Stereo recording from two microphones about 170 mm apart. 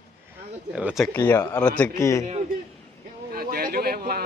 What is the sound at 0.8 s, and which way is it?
Speech, 5° right (ahead or behind).